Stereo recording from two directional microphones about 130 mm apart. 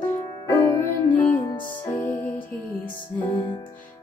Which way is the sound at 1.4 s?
35° left (ahead or behind).